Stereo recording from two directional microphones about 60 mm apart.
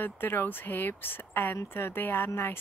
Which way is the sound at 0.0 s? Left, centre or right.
Left.